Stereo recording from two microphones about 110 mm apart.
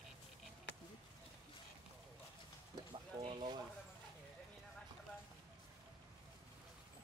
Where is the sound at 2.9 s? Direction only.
45° right (ahead or behind).